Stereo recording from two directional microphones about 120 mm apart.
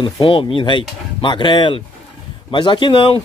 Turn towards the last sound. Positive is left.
turn(degrees=45)  # may be behind; listen again after turning